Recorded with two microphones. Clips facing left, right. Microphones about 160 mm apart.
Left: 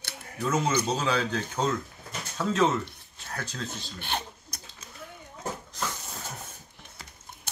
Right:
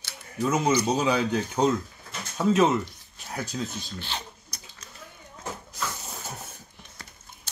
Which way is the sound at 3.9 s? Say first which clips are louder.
Left 2 dB; 55° left (ahead or behind).